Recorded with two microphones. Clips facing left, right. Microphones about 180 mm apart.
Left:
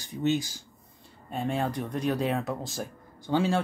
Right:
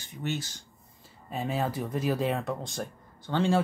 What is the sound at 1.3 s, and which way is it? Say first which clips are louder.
Speech: left 1 dB; centre (ahead or behind).